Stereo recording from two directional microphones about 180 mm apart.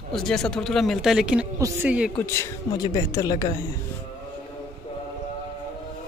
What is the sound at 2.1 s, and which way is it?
A man's voice, 15° left (ahead or behind).